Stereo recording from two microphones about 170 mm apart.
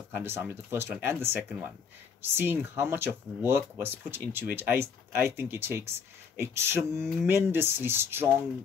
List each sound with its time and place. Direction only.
0.1 s speech: 10° right (ahead or behind)